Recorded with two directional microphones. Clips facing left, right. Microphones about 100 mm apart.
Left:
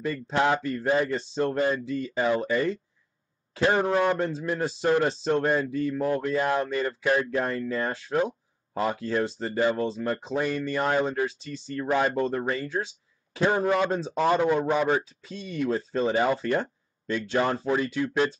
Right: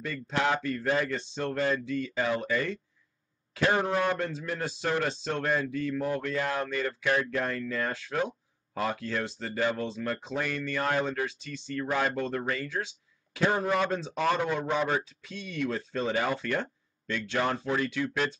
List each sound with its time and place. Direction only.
0.0 s speech: 25° left (ahead or behind)
3.8 s a man's voice: 15° left (ahead or behind)
4.1 s speech: 30° left (ahead or behind)
11.2 s speech: 35° left (ahead or behind)
11.7 s speech: 20° left (ahead or behind)
13.7 s a man's voice: 15° left (ahead or behind)
13.9 s speech: 30° left (ahead or behind)
14.2 s a man's voice: 20° left (ahead or behind)
15.2 s speech: 30° left (ahead or behind)
17.1 s speech: 40° left (ahead or behind)